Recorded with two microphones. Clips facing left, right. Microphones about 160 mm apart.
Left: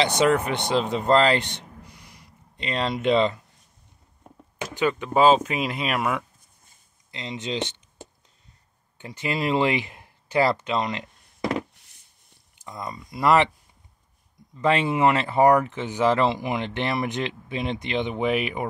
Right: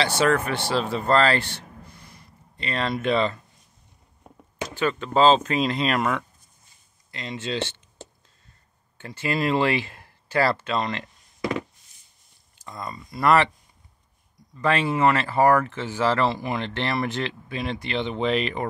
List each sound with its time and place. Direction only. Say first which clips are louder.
0.0 s speech: left 1 dB; 20° left (ahead or behind)
4.7 s speech: even; 15° left (ahead or behind)
12.5 s speech: left 1 dB; 15° left (ahead or behind)
14.6 s speech: left 1 dB; 20° left (ahead or behind)